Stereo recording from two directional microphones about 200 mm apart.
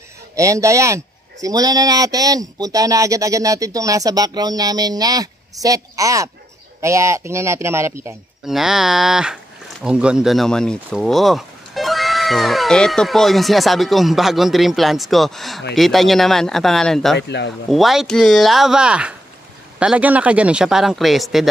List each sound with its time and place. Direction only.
0.4 s speech: 15° right (ahead or behind)
8.5 s speech: centre (ahead or behind)